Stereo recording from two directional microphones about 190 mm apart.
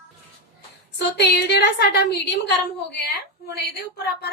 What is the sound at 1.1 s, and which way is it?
A woman's voice, 60° left (ahead or behind).